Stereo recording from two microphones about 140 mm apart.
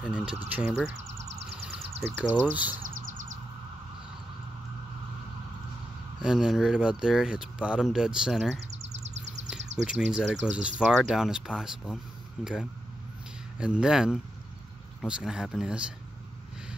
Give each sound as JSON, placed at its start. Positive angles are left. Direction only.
{"t": 0.0, "sound": "speech", "side_deg": -5}
{"t": 1.0, "sound": "a sound", "side_deg": -50}
{"t": 2.0, "sound": "speech", "side_deg": -10}
{"t": 6.2, "sound": "speech", "side_deg": -5}
{"t": 13.6, "sound": "speech", "side_deg": -5}